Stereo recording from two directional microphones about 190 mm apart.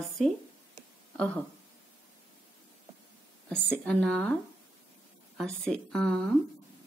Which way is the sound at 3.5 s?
5° left (ahead or behind).